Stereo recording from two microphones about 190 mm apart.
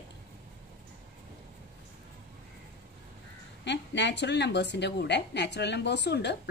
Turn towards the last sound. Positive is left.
turn(degrees=65)  # may be behind; listen again after turning